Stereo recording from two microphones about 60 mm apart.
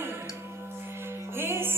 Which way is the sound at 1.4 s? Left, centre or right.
Right.